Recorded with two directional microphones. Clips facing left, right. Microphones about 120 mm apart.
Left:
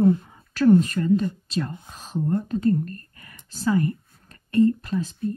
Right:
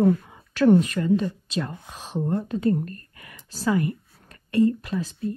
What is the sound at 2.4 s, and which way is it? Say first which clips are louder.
A woman's voice: left 1 dB; 40° left (ahead or behind).